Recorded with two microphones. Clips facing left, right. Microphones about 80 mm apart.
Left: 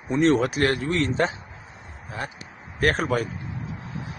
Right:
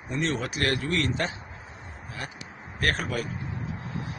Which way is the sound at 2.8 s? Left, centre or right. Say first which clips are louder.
Left 6 dB; left.